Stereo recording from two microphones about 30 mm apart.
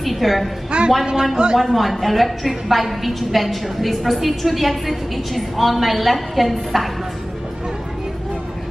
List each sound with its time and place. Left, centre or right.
0.0 s a woman's voice: centre
0.7 s a woman's voice: right
1.6 s a woman's voice: centre